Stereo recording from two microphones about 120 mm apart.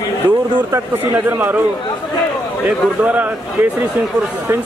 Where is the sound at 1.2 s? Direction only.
15° right (ahead or behind).